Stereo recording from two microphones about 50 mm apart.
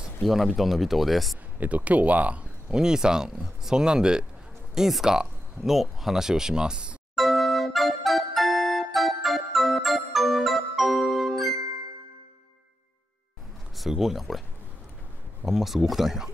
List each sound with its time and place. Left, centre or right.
0.2 s speech: centre
1.6 s speech: right
2.7 s speech: centre
7.2 s music: centre
13.7 s speech: centre
15.4 s speech: centre